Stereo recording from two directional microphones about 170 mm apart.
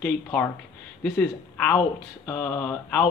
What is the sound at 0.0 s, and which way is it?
A woman's voice, 10° left (ahead or behind).